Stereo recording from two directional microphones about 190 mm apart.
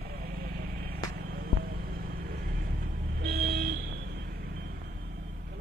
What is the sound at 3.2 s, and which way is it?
Vehicle, 55° right (ahead or behind).